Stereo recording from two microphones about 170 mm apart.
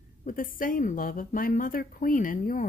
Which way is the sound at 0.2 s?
55° left (ahead or behind).